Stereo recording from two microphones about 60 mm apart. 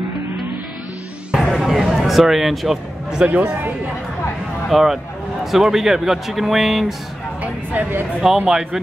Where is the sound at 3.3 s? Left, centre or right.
Right.